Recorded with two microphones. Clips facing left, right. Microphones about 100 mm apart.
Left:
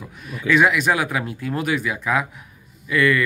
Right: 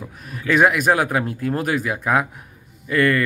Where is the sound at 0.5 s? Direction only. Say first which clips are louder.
Right 1 dB; 45° right (ahead or behind).